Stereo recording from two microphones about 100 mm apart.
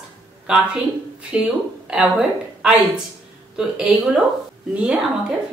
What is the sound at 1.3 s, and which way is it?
A woman's voice, 10° right (ahead or behind).